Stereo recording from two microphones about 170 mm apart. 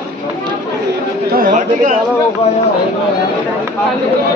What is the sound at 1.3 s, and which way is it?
Speech, 55° right (ahead or behind).